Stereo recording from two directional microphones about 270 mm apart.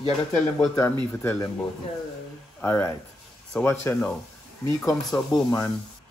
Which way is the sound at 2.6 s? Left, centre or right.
Centre.